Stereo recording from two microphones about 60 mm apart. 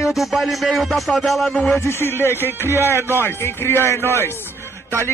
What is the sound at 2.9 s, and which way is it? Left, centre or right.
Speech, right.